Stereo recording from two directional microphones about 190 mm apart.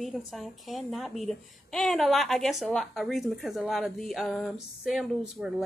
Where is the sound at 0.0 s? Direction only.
Centre (ahead or behind).